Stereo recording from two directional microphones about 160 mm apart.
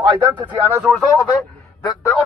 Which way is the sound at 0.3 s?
10° right (ahead or behind).